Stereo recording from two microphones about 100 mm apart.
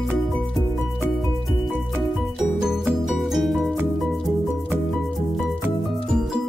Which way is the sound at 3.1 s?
Centre (ahead or behind).